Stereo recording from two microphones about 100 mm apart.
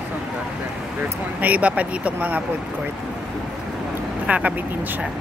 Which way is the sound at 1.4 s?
15° right (ahead or behind).